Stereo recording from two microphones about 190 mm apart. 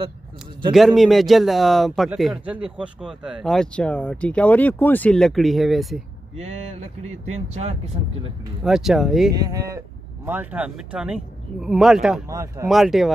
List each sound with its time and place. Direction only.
0.7 s speech: centre (ahead or behind)
6.3 s speech: 35° right (ahead or behind)
7.1 s speech: 90° right
7.5 s speech: 35° right (ahead or behind)
8.6 s speech: centre (ahead or behind)
9.3 s speech: 20° right (ahead or behind); by 12.2 s centre (ahead or behind)
12.3 s speech: 15° right (ahead or behind)
12.6 s speech: centre (ahead or behind)